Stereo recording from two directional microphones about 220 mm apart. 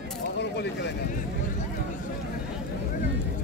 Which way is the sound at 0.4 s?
50° left (ahead or behind).